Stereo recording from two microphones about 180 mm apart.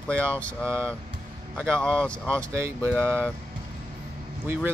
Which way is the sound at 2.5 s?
15° right (ahead or behind).